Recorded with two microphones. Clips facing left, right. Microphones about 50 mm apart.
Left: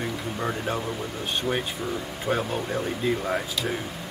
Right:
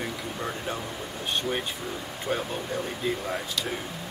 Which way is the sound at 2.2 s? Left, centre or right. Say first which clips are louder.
Left 3 dB; centre.